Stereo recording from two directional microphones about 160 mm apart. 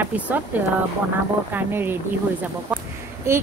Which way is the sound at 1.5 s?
15° right (ahead or behind).